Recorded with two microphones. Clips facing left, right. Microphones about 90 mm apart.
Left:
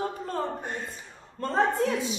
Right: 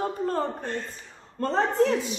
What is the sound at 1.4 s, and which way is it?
Speech, 40° right (ahead or behind).